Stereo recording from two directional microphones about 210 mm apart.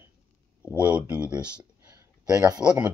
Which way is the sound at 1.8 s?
15° right (ahead or behind).